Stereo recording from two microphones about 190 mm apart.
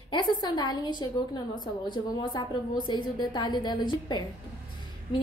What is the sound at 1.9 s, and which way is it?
A woman's voice, 25° left (ahead or behind).